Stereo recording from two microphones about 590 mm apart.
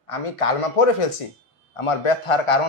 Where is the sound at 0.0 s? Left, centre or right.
Left.